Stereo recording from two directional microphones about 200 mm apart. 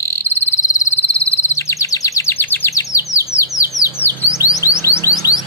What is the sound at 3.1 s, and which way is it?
Bird, 15° left (ahead or behind).